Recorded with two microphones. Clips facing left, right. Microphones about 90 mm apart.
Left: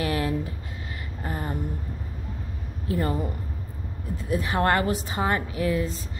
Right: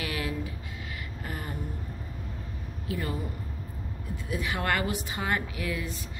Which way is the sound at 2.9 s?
40° left (ahead or behind).